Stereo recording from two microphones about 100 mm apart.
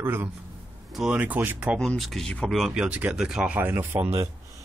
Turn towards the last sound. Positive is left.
turn(degrees=-25)  # may be behind; listen again after turning